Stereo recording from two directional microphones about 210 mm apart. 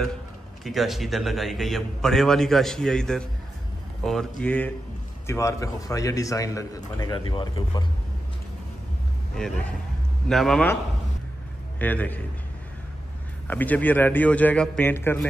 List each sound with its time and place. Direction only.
0.7 s a man's voice: centre (ahead or behind); by 7.8 s 20° left (ahead or behind)
10.2 s a man's voice: centre (ahead or behind)
11.8 s a man's voice: 10° left (ahead or behind)
13.5 s a man's voice: 10° left (ahead or behind)